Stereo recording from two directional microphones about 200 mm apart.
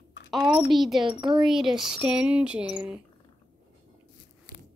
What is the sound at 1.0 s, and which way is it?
Speech, 25° right (ahead or behind).